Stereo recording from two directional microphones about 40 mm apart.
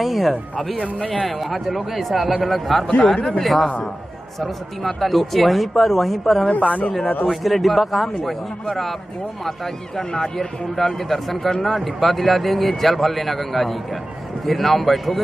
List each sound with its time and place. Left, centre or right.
0.0 s speech: centre
6.5 s speech: left
7.2 s speech: centre
9.9 s speech: centre